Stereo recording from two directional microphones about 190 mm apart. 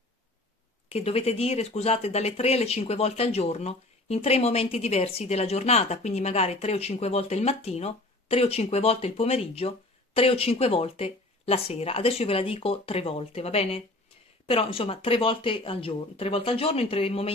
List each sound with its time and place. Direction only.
0.9 s speech: 30° left (ahead or behind)